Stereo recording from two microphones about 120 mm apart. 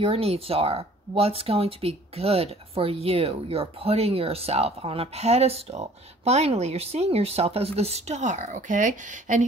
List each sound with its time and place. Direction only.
0.0 s speech: 55° right (ahead or behind); by 9.4 s 90° right